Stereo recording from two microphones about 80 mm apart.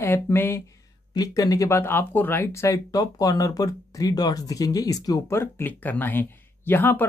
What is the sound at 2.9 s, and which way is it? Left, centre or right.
Speech, left.